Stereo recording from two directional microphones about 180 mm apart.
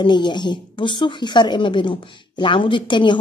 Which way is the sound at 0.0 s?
25° left (ahead or behind).